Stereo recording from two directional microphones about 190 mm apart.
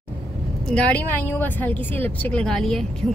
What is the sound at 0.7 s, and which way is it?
A woman's voice, 5° left (ahead or behind).